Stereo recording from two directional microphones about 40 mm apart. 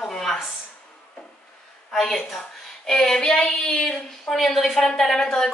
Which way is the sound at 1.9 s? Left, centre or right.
Centre.